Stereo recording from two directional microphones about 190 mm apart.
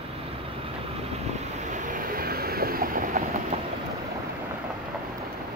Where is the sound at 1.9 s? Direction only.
50° right (ahead or behind).